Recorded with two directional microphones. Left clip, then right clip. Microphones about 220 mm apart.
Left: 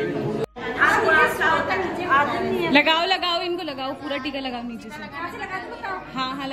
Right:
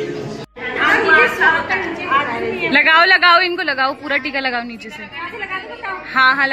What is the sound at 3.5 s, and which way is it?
Speech, centre (ahead or behind).